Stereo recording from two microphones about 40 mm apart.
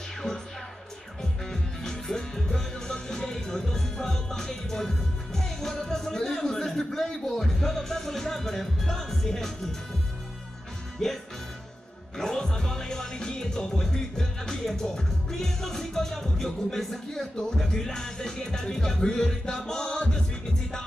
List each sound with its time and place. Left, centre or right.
1.5 s music: centre
11.0 s speech: centre
12.2 s music: centre
14.7 s speech: centre